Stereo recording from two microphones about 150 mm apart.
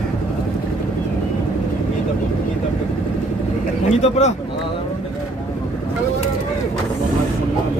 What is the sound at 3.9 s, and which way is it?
Speech, 50° left (ahead or behind).